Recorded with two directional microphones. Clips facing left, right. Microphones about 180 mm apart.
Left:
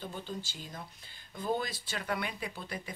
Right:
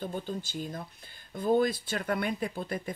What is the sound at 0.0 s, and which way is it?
Speech, 50° right (ahead or behind).